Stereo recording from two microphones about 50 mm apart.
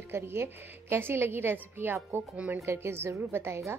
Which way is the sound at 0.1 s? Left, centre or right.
Right.